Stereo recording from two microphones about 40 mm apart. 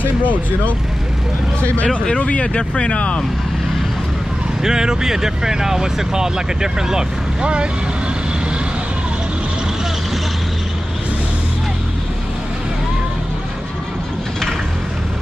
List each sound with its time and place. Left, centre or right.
0.0 s speech: left
2.1 s speech: left
4.6 s speech: centre